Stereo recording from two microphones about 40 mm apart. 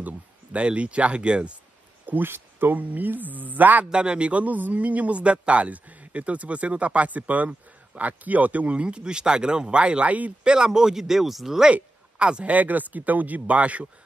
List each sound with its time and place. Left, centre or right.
0.0 s speech: right
2.2 s speech: right
2.7 s speech: right
3.9 s a man's voice: right
8.8 s speech: right
10.4 s speech: right; by 11.6 s centre
11.7 s a sound: right
12.5 s speech: right